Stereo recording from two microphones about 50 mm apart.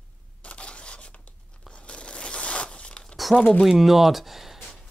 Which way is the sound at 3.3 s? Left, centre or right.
Centre.